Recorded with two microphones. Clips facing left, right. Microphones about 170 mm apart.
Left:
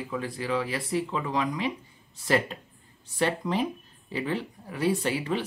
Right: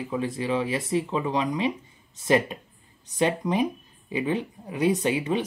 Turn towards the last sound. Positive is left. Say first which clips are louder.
# right 3 dB
turn(degrees=-20)  # may be behind; listen again after turning